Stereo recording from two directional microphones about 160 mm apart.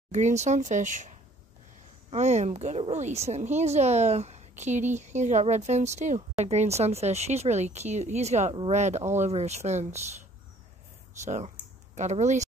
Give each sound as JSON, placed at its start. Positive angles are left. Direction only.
{"t": 0.1, "sound": "a woman's voice", "side_deg": -45}
{"t": 11.2, "sound": "speech", "side_deg": -50}